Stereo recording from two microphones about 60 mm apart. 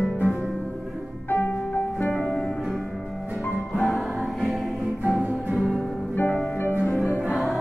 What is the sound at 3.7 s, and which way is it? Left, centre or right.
Music, centre.